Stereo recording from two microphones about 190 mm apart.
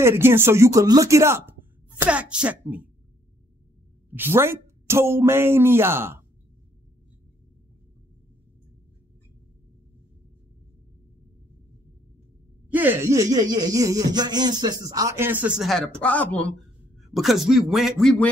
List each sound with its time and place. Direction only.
0.0 s speech: 10° right (ahead or behind)
4.1 s speech: 10° right (ahead or behind)
12.7 s a man's voice: 10° right (ahead or behind)